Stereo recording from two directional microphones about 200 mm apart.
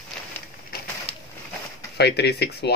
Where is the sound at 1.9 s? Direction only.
55° left (ahead or behind).